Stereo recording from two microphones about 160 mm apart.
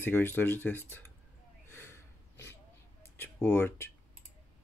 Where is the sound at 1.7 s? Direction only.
15° left (ahead or behind).